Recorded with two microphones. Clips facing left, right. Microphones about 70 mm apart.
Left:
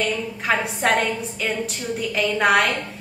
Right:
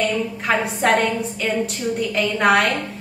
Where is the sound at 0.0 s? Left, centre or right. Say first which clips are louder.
Right 3 dB; centre.